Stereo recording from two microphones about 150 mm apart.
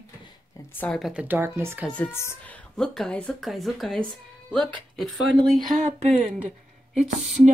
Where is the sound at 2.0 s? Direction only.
15° left (ahead or behind).